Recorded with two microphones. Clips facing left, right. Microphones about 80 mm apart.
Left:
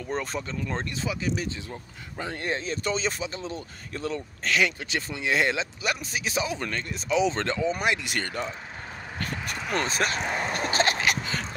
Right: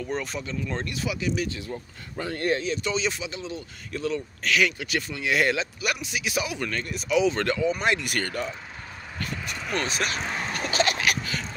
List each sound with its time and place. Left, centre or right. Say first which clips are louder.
0.0 s speech: even; left
1.7 s speech: right 4 dB; centre
2.6 s speech: right 1 dB; left
9.8 s speech: left 2 dB; left
10.5 s a sound: right 1 dB; left